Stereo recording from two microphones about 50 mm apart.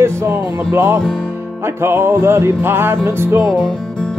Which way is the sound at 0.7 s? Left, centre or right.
Right.